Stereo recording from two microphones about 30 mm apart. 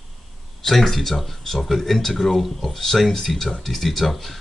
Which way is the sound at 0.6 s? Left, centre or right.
Centre.